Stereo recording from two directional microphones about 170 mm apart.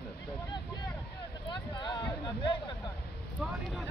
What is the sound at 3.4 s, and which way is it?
Vehicle, 5° left (ahead or behind).